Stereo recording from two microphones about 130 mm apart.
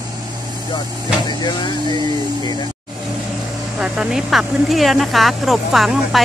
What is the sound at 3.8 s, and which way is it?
Speech, 5° right (ahead or behind).